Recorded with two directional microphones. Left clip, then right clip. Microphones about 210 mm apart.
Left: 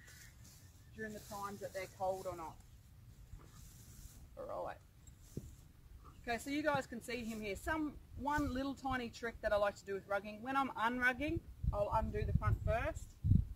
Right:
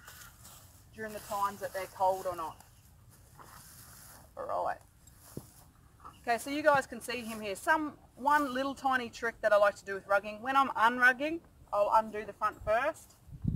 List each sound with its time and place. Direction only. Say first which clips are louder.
0.9 s speech: right 10 dB; 15° left (ahead or behind)
4.4 s speech: right 10 dB; 20° left (ahead or behind)
6.2 s speech: right 10 dB; 5° left (ahead or behind)